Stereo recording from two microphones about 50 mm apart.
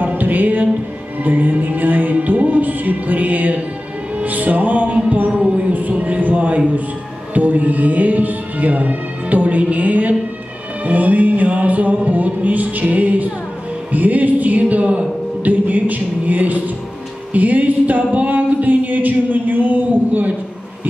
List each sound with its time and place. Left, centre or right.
0.0 s music: right
1.2 s singing: right
4.2 s music: right
5.3 s singing: right
13.9 s speech: right
17.3 s singing: right